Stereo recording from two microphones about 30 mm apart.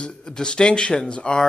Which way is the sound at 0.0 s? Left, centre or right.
Left.